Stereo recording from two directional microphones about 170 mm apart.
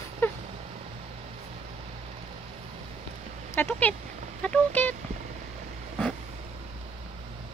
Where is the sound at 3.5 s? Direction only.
10° left (ahead or behind).